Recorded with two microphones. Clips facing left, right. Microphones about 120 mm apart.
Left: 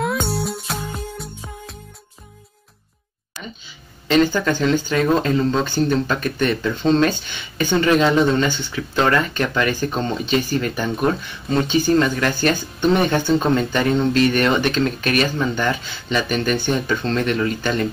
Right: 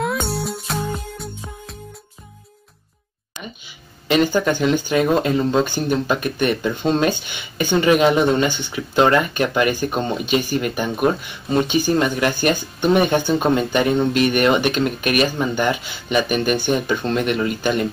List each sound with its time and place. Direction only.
0.0 s music: centre (ahead or behind)
3.3 s speech: 15° right (ahead or behind)